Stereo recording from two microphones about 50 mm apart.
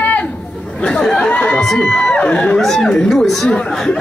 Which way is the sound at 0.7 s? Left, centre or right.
Left.